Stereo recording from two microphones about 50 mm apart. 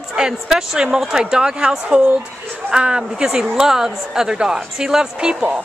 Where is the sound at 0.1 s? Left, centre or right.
Centre.